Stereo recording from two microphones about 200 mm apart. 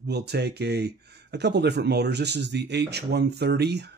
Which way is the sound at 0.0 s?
55° right (ahead or behind).